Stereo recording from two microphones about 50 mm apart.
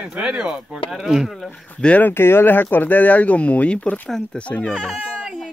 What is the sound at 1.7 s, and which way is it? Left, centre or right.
Speech, left.